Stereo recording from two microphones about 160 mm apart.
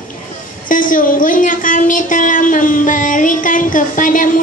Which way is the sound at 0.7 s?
55° left (ahead or behind).